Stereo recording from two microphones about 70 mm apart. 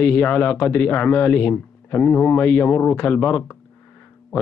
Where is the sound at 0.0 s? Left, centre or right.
Left.